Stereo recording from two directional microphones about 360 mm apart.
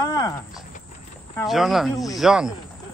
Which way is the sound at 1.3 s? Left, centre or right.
Centre.